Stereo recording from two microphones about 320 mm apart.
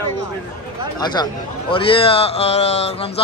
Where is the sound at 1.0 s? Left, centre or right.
Centre.